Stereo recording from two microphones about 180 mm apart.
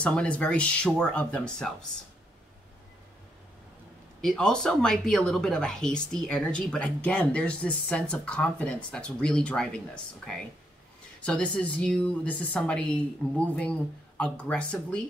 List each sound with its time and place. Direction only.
0.0 s a woman's voice: 5° left (ahead or behind)
4.2 s speech: 5° left (ahead or behind)
11.2 s a woman's voice: 5° left (ahead or behind)